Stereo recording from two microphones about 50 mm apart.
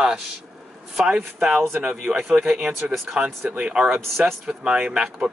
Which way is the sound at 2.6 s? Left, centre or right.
Centre.